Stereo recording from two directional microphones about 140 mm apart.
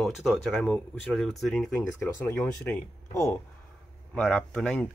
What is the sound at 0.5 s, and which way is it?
Speech, 10° left (ahead or behind).